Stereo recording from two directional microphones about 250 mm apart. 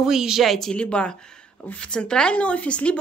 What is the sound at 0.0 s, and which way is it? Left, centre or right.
Speech, centre.